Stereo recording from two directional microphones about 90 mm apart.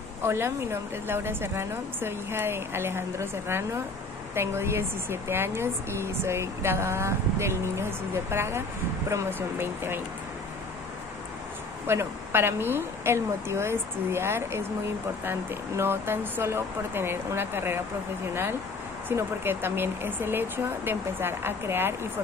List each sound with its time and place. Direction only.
0.2 s speech: 30° right (ahead or behind)
11.9 s speech: 25° right (ahead or behind)